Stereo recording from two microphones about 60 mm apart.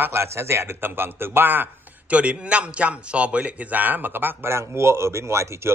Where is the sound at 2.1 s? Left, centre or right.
Right.